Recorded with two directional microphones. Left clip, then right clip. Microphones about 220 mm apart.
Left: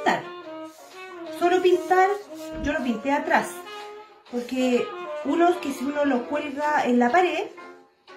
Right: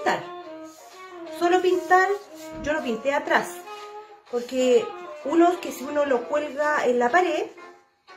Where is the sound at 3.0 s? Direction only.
25° right (ahead or behind).